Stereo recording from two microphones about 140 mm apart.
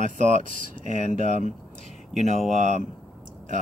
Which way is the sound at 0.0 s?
65° right (ahead or behind).